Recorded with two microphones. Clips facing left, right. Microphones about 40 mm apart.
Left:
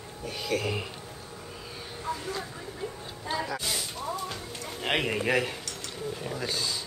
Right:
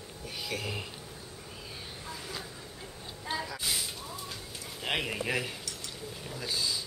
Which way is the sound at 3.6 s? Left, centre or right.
Centre.